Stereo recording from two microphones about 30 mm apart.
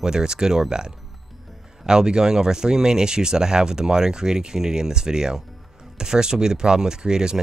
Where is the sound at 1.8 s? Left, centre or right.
Right.